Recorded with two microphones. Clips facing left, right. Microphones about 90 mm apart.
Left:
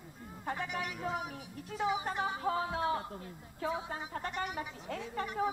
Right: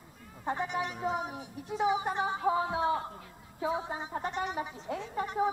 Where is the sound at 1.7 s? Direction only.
20° right (ahead or behind).